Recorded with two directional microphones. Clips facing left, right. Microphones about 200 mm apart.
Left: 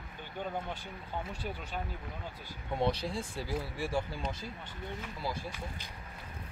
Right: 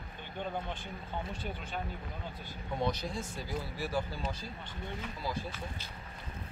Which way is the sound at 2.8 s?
30° left (ahead or behind).